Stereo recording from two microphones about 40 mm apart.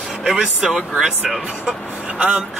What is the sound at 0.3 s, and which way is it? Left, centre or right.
Speech, centre.